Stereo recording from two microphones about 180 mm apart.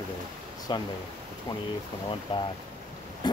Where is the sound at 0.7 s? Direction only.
25° left (ahead or behind).